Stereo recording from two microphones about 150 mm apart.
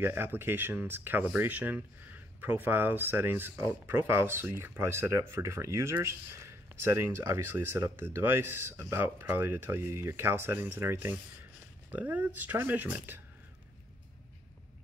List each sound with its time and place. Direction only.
0.0 s speech: 15° right (ahead or behind)